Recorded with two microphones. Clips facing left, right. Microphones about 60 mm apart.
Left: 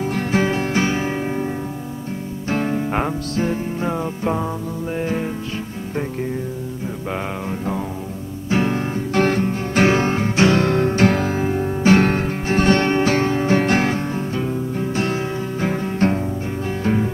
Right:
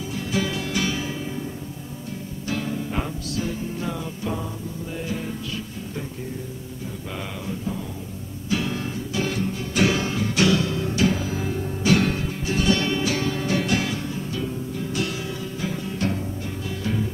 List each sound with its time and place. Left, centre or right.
0.0 s guitar: left
2.4 s music: left
8.5 s music: left
10.6 s music: left